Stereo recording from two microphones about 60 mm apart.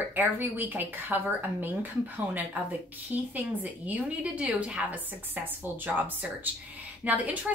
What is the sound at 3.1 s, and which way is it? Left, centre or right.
A woman's voice, right.